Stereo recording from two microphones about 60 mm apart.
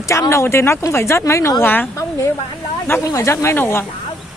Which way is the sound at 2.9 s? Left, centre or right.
Left.